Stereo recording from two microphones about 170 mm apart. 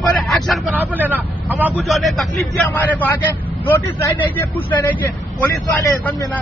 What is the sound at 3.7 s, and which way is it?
Speech, 15° left (ahead or behind).